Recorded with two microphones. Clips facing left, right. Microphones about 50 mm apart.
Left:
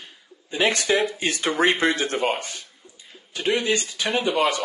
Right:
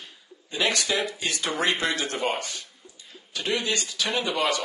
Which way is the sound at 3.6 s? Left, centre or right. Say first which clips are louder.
Left 4 dB; left.